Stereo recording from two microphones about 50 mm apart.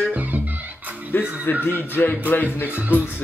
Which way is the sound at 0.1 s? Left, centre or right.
Right.